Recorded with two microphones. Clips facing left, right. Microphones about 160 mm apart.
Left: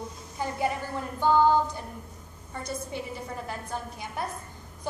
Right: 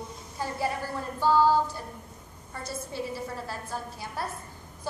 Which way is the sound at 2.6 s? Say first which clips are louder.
Even; 20° left (ahead or behind).